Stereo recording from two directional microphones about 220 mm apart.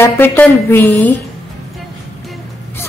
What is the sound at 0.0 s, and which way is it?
A woman's voice, 10° left (ahead or behind).